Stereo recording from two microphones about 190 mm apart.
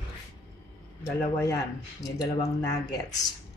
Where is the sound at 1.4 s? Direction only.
15° left (ahead or behind).